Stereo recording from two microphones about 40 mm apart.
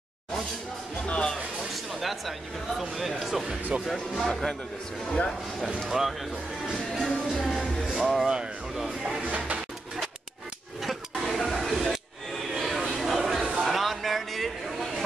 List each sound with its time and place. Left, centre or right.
1.0 s speech: left
2.0 s speech: centre
4.1 s a man's voice: centre
5.9 s speech: centre
6.7 s music: centre
7.9 s speech: centre
9.2 s a sound: right
10.8 s a sound: centre